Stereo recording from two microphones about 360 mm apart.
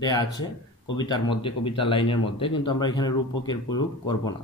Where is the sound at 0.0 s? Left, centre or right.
Centre.